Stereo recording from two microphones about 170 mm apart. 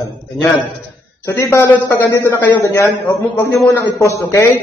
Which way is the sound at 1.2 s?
15° left (ahead or behind).